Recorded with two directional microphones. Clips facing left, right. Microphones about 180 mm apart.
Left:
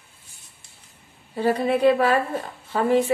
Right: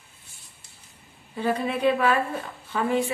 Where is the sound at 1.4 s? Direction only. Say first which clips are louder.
Left 5 dB; 35° left (ahead or behind).